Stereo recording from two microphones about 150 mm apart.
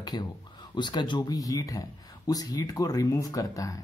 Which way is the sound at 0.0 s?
25° left (ahead or behind).